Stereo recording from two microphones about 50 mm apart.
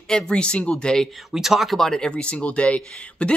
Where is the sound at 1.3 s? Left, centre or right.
Centre.